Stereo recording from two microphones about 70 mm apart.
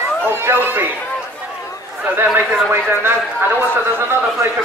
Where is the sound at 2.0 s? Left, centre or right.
Right.